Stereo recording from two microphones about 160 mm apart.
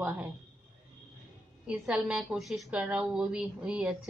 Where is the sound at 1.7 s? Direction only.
5° right (ahead or behind).